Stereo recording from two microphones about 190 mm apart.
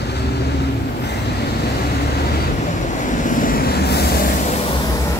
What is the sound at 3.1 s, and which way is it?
Vehicle, 45° left (ahead or behind).